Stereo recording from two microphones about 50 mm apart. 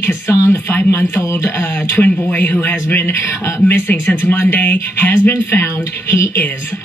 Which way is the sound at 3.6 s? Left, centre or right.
Left.